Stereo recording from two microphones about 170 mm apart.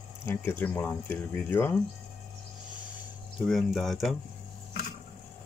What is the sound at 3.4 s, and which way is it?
Speech, centre (ahead or behind).